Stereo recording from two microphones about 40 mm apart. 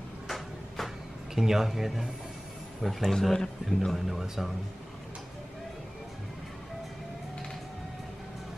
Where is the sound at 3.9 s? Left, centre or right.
Centre.